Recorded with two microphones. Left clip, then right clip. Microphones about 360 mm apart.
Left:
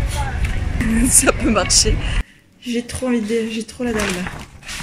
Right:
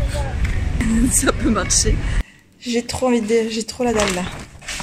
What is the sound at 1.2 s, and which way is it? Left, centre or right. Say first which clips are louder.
Speech: left 5 dB; centre.